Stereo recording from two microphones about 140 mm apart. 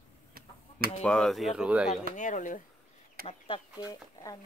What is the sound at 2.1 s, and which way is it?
Speech, 65° left (ahead or behind).